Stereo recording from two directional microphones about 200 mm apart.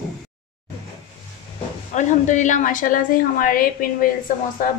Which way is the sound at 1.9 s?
35° left (ahead or behind).